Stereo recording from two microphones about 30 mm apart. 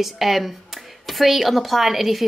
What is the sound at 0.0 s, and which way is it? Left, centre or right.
A woman's voice, centre.